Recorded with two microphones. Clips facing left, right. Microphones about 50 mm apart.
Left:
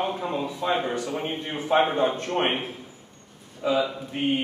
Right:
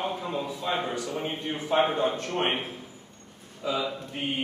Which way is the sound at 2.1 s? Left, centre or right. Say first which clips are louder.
Left 3 dB; left.